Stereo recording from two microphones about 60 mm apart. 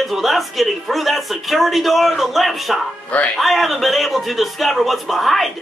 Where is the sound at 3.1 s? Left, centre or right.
Left.